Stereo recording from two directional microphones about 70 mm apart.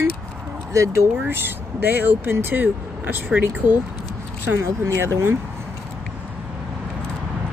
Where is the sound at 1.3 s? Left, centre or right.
Right.